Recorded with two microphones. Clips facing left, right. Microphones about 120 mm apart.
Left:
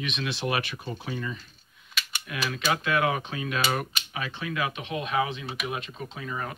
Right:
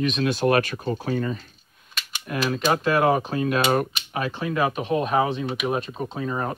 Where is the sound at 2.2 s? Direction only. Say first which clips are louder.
Right 6 dB; 45° right (ahead or behind).